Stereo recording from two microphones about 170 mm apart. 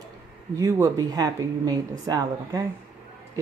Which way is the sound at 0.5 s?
20° right (ahead or behind).